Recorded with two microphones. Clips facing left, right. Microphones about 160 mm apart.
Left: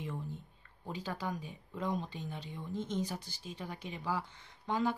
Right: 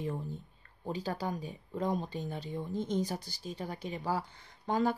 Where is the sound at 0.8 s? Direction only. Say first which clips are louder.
Right 4 dB; 35° right (ahead or behind).